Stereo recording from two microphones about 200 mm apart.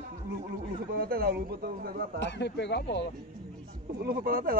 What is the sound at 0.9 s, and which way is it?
Speech, 45° right (ahead or behind).